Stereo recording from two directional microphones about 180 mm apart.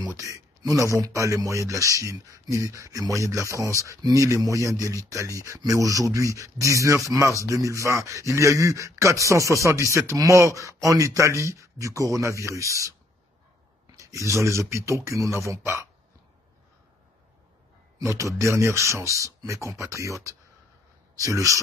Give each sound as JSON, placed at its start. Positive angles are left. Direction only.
{"t": 0.0, "sound": "speech", "side_deg": -20}
{"t": 13.9, "sound": "speech", "side_deg": -15}
{"t": 17.9, "sound": "speech", "side_deg": -15}